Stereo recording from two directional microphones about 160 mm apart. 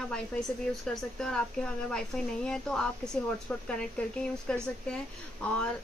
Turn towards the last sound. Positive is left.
turn(degrees=5)  # may be behind; listen again after turning